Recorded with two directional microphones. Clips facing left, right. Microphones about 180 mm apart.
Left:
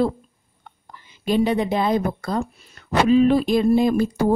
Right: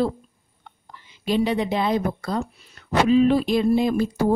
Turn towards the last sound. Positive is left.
turn(degrees=45)  # may be behind; listen again after turning